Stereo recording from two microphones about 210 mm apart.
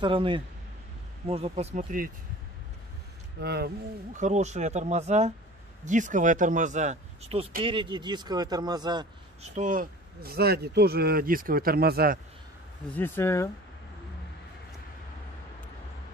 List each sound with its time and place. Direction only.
0.0 s speech: 25° right (ahead or behind); by 2.0 s 40° right (ahead or behind)
3.3 s speech: 50° right (ahead or behind)
4.2 s speech: 35° right (ahead or behind)
9.6 s speech: 40° right (ahead or behind)
12.9 s speech: 10° left (ahead or behind)